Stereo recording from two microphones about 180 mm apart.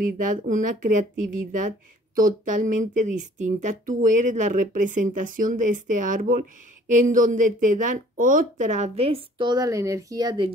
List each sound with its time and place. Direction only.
0.0 s speech: 45° right (ahead or behind); by 10.5 s 25° right (ahead or behind)